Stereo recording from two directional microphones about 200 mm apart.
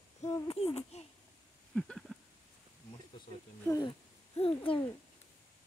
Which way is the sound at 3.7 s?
20° left (ahead or behind).